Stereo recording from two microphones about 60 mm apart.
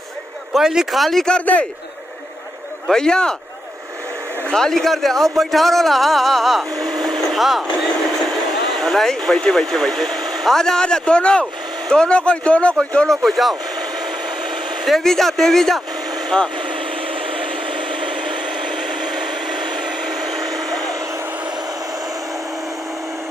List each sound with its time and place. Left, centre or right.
0.5 s a man's voice: centre
1.4 s a man's voice: left
2.9 s speech: centre
4.5 s a man's voice: centre
8.7 s speech: centre
14.9 s a man's voice: centre
18.5 s a sound: centre